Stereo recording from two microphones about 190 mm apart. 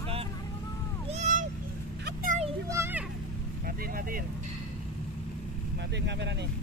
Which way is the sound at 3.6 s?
50° right (ahead or behind).